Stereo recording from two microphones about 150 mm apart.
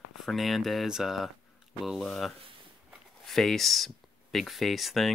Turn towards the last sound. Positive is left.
turn(degrees=0)  # may be behind; listen again after turning